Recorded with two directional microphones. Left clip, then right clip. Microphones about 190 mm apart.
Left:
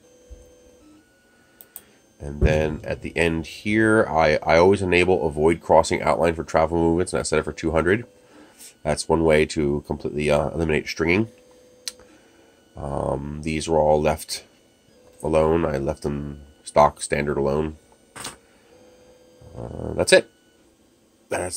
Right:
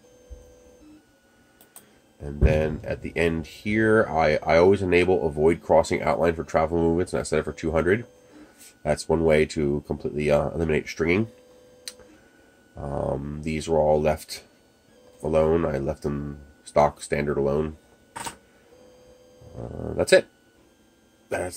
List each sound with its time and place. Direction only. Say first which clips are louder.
2.1 s speech: left 2 dB; 20° left (ahead or behind)
11.9 s tick-tock: left 5 dB; 20° left (ahead or behind)
12.7 s speech: left 2 dB; 15° left (ahead or behind)
19.5 s speech: left 2 dB; 15° left (ahead or behind)
21.3 s speech: left 2 dB; 20° left (ahead or behind)